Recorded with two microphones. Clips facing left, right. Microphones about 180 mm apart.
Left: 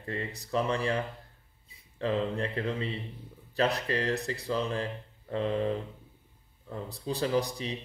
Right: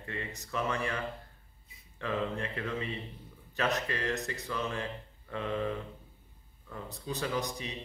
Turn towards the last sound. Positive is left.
turn(degrees=35)  # may be behind; listen again after turning